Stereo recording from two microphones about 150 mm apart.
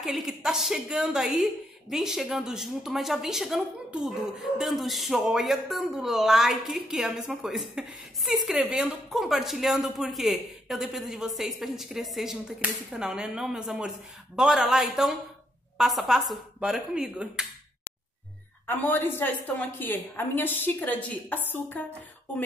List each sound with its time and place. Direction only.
0.0 s speech: 5° right (ahead or behind)
18.7 s a woman's voice: 15° left (ahead or behind)